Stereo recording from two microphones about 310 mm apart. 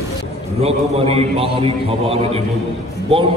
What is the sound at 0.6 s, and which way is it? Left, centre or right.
A man's voice, centre.